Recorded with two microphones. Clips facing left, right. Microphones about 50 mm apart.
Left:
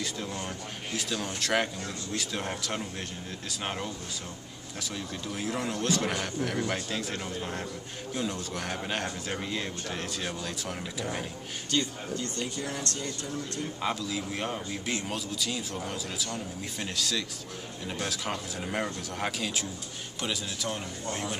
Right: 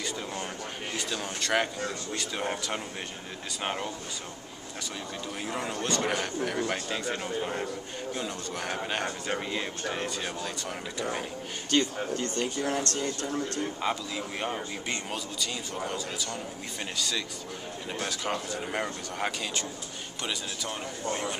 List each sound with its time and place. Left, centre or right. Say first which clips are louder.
0.0 s a man's voice: even; centre
5.3 s a man's voice: left 2 dB; centre
11.7 s speech: right 4 dB; right
13.7 s a man's voice: even; centre